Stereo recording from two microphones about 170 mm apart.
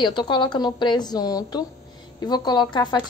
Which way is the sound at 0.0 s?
25° left (ahead or behind).